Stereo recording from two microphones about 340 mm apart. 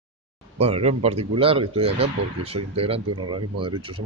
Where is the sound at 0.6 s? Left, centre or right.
Centre.